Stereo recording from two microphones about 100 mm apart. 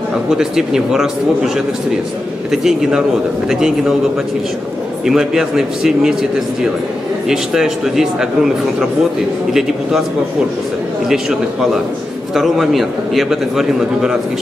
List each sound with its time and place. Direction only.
0.3 s a man's voice: 5° right (ahead or behind)
2.5 s a man's voice: 5° right (ahead or behind)
5.0 s a man's voice: 5° right (ahead or behind)
7.2 s a man's voice: 5° right (ahead or behind)
11.1 s a man's voice: 5° right (ahead or behind)